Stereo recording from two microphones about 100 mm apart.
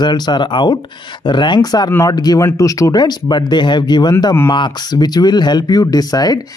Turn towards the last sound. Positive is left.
turn(degrees=40)  # may be behind; listen again after turning